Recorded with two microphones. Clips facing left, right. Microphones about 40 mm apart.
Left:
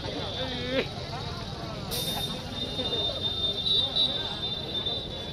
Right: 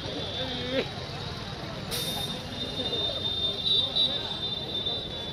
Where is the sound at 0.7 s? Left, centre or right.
Left.